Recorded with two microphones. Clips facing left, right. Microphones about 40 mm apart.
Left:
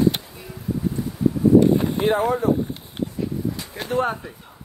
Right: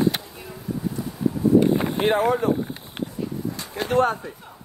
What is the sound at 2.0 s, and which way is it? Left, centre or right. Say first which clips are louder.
Speech: even; right.